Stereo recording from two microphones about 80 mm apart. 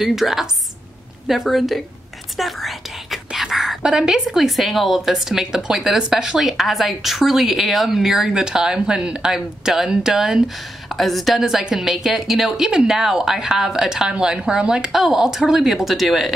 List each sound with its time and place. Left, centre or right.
0.0 s a woman's voice: centre
2.3 s whispering: centre
3.3 s a woman's voice: centre